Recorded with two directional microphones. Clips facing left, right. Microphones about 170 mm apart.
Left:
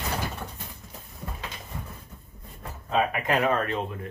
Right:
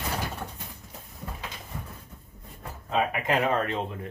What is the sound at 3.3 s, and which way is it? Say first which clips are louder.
Speech: left 1 dB; 20° right (ahead or behind).